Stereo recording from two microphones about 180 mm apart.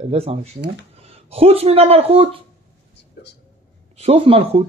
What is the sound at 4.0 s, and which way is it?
Speech, 35° right (ahead or behind).